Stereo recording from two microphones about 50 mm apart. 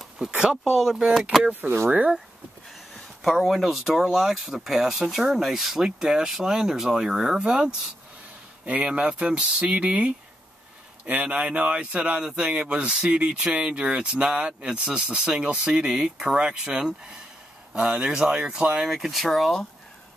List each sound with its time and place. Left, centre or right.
0.4 s speech: centre
1.5 s speech: right
3.3 s speech: centre; by 10.1 s right
11.2 s speech: right
18.9 s speech: centre